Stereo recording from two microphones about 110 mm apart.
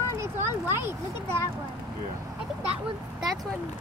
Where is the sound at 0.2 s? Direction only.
25° right (ahead or behind).